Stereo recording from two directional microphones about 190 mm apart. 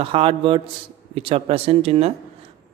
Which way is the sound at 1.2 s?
30° right (ahead or behind).